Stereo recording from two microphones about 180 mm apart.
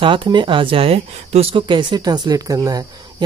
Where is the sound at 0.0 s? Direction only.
25° right (ahead or behind).